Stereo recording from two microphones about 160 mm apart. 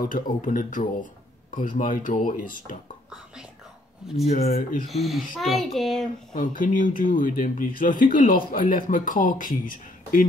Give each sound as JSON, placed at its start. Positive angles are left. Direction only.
{"t": 0.0, "sound": "speech", "side_deg": 60}
{"t": 4.3, "sound": "speech", "side_deg": 55}
{"t": 4.8, "sound": "a child's voice", "side_deg": 0}
{"t": 6.3, "sound": "speech", "side_deg": 55}